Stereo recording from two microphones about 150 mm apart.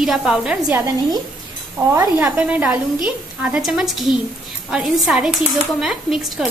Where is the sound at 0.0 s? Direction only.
5° right (ahead or behind).